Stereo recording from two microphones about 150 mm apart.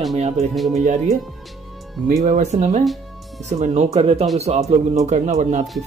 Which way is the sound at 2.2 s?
55° right (ahead or behind).